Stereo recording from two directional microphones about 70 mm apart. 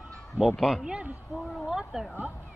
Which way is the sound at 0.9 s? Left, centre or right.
Centre.